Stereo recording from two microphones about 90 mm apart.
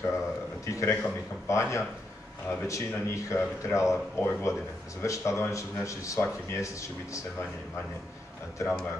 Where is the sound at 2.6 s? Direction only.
35° left (ahead or behind).